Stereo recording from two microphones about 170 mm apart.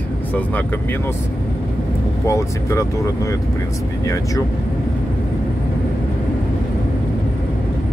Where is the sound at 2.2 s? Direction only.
20° left (ahead or behind).